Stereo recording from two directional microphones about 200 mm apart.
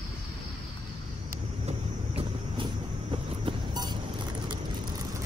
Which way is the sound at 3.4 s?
20° right (ahead or behind).